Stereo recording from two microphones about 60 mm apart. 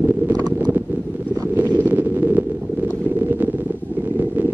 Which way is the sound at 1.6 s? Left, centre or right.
Right.